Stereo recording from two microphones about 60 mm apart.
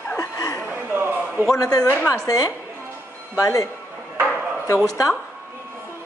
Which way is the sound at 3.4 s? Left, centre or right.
Left.